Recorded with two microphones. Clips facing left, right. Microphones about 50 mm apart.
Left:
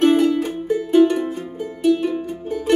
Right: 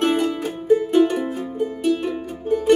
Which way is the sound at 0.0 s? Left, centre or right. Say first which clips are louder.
Left 5 dB; centre.